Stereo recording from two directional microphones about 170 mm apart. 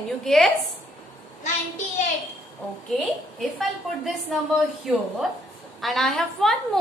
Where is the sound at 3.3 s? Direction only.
Centre (ahead or behind).